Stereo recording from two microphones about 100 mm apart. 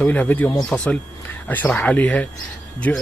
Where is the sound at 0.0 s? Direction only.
15° left (ahead or behind).